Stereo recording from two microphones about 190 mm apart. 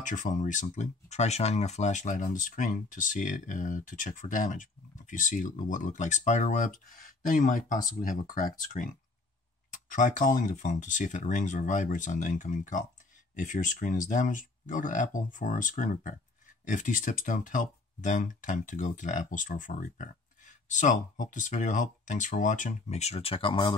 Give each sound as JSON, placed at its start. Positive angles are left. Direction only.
{"t": 0.0, "sound": "speech", "side_deg": 40}